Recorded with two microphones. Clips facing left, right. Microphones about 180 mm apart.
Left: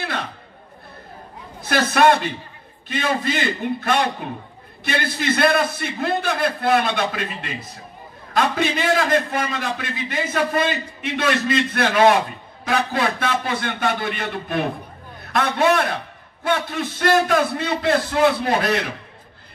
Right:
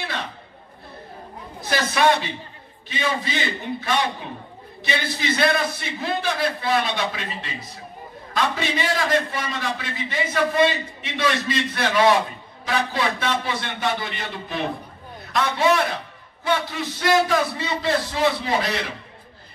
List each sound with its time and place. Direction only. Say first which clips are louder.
1.7 s a man's voice: left 3 dB; 55° left (ahead or behind)